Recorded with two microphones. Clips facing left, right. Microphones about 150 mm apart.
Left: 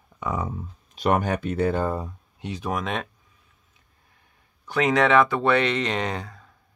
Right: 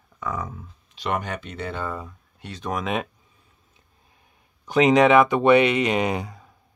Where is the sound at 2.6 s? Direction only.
Centre (ahead or behind).